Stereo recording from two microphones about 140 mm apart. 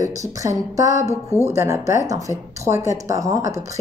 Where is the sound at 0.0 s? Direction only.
25° right (ahead or behind).